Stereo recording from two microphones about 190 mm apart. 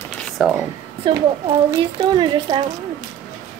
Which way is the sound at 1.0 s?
25° right (ahead or behind).